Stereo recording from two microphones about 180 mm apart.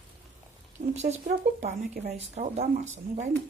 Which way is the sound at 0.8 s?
40° right (ahead or behind).